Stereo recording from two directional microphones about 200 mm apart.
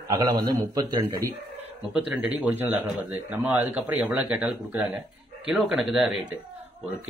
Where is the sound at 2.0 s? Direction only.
10° right (ahead or behind).